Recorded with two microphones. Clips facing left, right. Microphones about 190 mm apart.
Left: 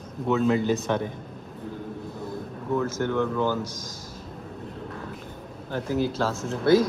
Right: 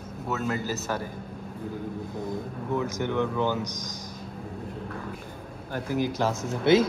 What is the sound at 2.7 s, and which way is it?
A man's voice, 15° right (ahead or behind).